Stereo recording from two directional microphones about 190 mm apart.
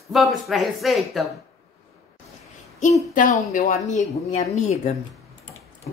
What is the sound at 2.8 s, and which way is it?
Speech, 45° left (ahead or behind).